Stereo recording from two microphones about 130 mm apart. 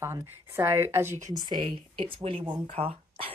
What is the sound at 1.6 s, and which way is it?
Speech, 40° right (ahead or behind).